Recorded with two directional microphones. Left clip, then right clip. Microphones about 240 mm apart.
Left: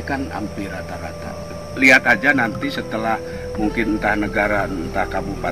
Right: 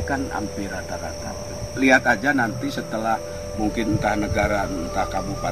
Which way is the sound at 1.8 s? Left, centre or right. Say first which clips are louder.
Left 5 dB; centre.